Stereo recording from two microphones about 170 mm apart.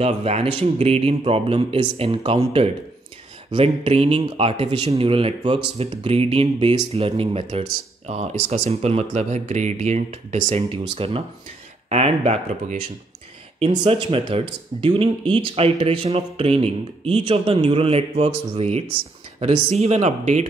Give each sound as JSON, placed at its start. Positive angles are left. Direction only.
{"t": 0.0, "sound": "speech", "side_deg": -35}